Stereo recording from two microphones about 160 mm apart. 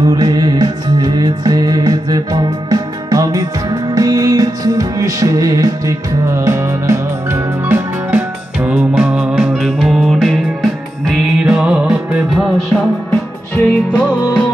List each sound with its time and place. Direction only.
0.0 s music: 25° right (ahead or behind); by 12.8 s centre (ahead or behind)
13.1 s music: 10° left (ahead or behind)